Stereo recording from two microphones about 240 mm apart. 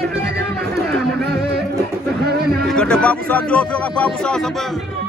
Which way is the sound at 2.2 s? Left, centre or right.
Right.